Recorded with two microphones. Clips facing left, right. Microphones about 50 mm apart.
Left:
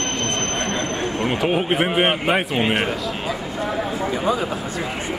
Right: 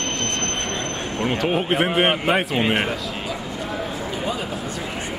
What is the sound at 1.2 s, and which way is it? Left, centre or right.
A man's voice, centre.